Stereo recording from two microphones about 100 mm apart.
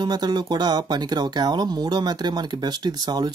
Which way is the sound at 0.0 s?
45° right (ahead or behind).